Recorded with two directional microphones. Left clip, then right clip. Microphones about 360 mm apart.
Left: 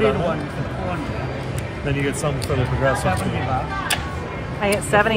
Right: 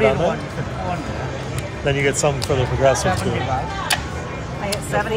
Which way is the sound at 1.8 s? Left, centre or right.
Right.